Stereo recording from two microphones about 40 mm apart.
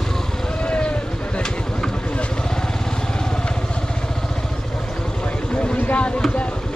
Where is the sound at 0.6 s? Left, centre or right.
Left.